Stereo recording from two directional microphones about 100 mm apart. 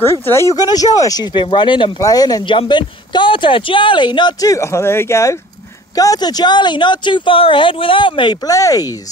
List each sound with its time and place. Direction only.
0.0 s speech: 25° left (ahead or behind)
0.6 s speech: 40° left (ahead or behind)
1.3 s speech: 50° left (ahead or behind)
2.0 s speech: 40° left (ahead or behind)
5.9 s speech: 40° left (ahead or behind)
8.5 s speech: 35° left (ahead or behind)